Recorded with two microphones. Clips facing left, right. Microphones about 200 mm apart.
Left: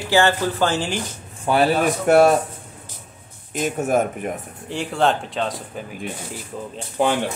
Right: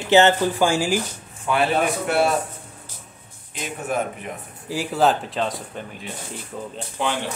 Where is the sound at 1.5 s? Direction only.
40° left (ahead or behind).